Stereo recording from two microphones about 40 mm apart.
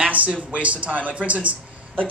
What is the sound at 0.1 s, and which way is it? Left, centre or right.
Speech, right.